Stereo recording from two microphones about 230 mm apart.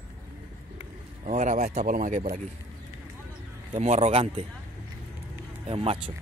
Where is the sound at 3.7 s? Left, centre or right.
Right.